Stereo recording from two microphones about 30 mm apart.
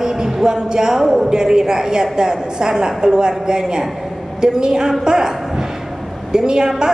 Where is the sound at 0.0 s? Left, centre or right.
Right.